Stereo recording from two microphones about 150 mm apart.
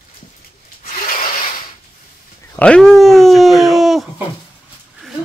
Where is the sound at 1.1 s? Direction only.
70° left (ahead or behind).